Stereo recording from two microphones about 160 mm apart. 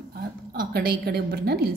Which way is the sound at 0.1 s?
70° right (ahead or behind).